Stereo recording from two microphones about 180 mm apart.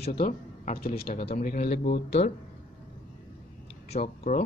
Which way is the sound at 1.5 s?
65° left (ahead or behind).